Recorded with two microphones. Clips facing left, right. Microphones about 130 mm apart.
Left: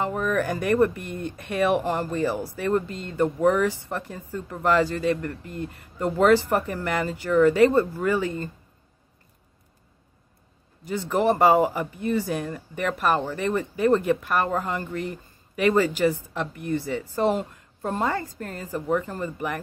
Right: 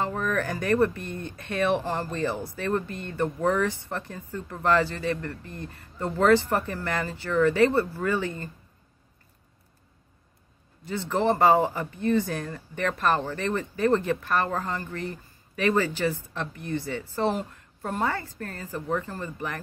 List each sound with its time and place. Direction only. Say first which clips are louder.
0.0 s speech: left 3 dB; 10° left (ahead or behind)
10.9 s speech: left 2 dB; 15° left (ahead or behind)